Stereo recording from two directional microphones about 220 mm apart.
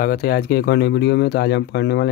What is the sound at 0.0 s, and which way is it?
Speech, 40° left (ahead or behind).